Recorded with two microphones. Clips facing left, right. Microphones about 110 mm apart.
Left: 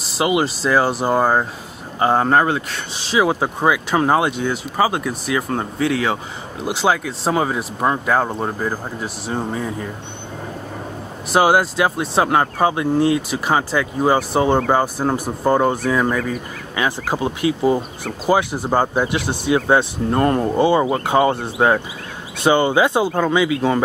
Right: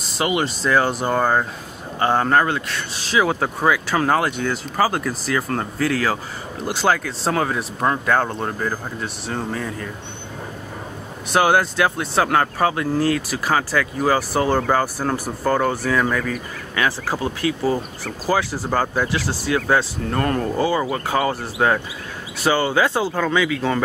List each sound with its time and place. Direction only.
0.0 s speech: 5° left (ahead or behind)
2.0 s speech: 25° left (ahead or behind)
4.9 s speech: centre (ahead or behind); by 6.1 s 20° left (ahead or behind)
6.8 s speech: 5° left (ahead or behind)
7.3 s speech: 20° left (ahead or behind)
9.3 s speech: 25° left (ahead or behind)
11.4 s speech: 5° left (ahead or behind)
12.2 s speech: 20° left (ahead or behind)